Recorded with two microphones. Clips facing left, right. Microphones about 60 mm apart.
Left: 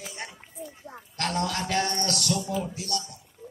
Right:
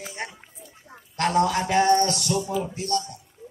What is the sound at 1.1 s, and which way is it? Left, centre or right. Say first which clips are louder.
A man's voice: right 7 dB; centre.